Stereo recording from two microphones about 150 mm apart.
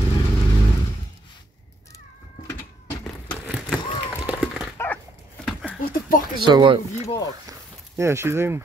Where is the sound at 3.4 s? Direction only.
5° right (ahead or behind).